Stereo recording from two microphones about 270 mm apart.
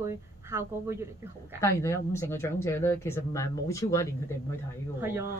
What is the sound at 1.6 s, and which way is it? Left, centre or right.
Speech, centre.